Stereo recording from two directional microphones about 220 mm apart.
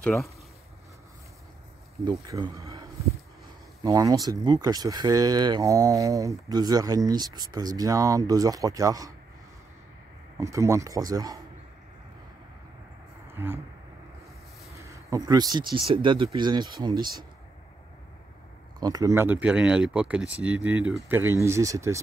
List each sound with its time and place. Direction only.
0.0 s speech: centre (ahead or behind)
2.0 s speech: 15° right (ahead or behind)
3.8 s speech: 15° right (ahead or behind)
10.4 s speech: 15° right (ahead or behind)
13.3 s speech: 10° right (ahead or behind)
14.7 s speech: 15° right (ahead or behind)
18.8 s speech: 15° right (ahead or behind)